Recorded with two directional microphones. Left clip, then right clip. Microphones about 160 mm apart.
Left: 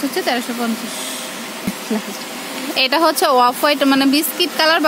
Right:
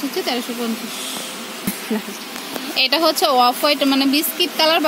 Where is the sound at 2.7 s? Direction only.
10° left (ahead or behind).